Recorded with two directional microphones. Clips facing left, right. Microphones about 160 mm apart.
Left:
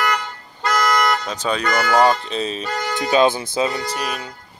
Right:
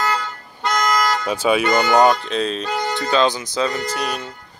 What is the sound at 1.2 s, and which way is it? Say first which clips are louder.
Speech: right 5 dB; 10° right (ahead or behind).